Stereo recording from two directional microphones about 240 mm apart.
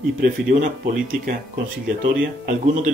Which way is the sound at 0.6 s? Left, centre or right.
Right.